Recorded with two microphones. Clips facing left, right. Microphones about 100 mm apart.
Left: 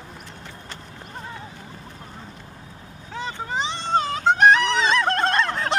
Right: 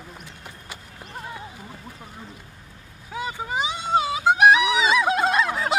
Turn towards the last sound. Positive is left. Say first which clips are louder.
# even
turn(degrees=-5)  # may be behind; listen again after turning